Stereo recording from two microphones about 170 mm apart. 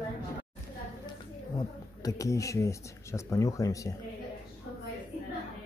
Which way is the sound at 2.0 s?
20° left (ahead or behind).